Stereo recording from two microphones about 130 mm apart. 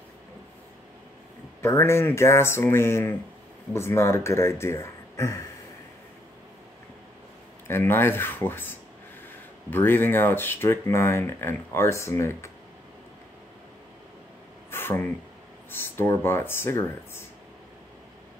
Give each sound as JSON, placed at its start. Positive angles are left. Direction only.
{"t": 1.6, "sound": "speech", "side_deg": 20}
{"t": 7.6, "sound": "speech", "side_deg": 20}
{"t": 14.7, "sound": "a sound", "side_deg": 15}
{"t": 15.7, "sound": "speech", "side_deg": 15}